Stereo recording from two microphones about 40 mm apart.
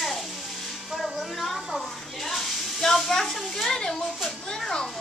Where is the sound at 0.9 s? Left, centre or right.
Centre.